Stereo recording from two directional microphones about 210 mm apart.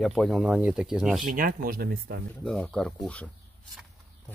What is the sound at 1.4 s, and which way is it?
Speech, 40° right (ahead or behind).